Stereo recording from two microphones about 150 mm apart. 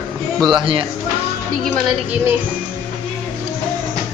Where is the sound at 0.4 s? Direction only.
30° right (ahead or behind).